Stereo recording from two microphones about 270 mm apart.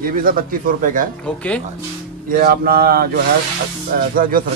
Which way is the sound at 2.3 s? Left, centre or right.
Right.